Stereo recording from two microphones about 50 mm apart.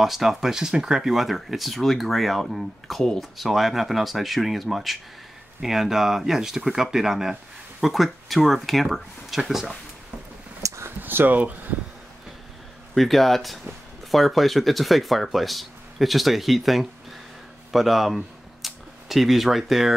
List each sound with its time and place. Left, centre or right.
0.0 s speech: centre
10.6 s a sound: right
11.0 s speech: right
12.9 s speech: centre